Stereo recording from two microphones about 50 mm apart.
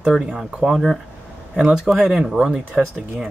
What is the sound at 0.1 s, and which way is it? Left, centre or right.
Speech, centre.